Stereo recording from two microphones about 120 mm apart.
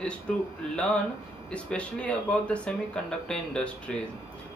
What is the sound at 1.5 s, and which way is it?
Speech, 10° left (ahead or behind).